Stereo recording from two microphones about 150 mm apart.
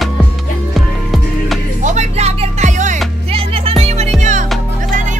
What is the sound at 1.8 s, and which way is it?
Music, 50° right (ahead or behind).